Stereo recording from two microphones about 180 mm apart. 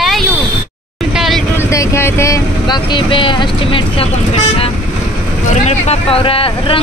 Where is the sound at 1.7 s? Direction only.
15° left (ahead or behind).